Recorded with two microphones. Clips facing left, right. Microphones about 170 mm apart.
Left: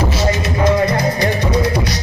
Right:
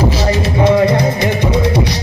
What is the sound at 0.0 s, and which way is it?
Music, 30° right (ahead or behind).